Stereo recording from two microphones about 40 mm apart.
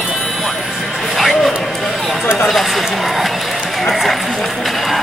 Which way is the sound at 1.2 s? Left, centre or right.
Centre.